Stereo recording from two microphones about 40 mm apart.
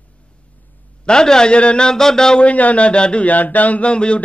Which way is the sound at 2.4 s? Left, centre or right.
Left.